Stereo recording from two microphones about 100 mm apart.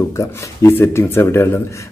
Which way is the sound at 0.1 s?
30° left (ahead or behind).